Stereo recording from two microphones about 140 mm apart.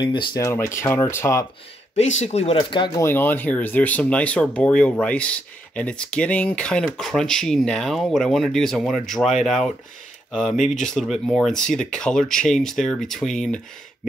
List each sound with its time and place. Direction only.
0.0 s speech: 35° left (ahead or behind)
0.4 s speech: 20° left (ahead or behind)
2.0 s speech: 55° left (ahead or behind)
2.5 s speech: 35° left (ahead or behind)
3.0 s speech: 15° left (ahead or behind)